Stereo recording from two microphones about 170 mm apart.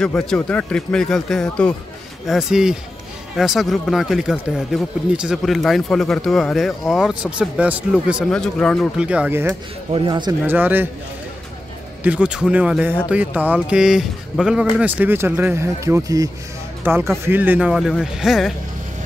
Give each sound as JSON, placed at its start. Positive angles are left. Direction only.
{"t": 0.0, "sound": "speech", "side_deg": 5}
{"t": 9.8, "sound": "speech", "side_deg": -30}
{"t": 10.4, "sound": "speech", "side_deg": -10}
{"t": 12.0, "sound": "speech", "side_deg": -5}